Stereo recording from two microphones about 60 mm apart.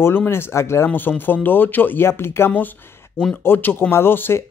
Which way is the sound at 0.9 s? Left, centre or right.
Left.